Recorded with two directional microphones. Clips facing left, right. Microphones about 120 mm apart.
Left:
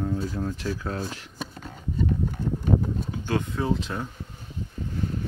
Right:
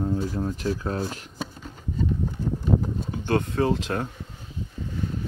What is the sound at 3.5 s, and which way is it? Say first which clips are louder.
Speech: right 3 dB; 70° right (ahead or behind).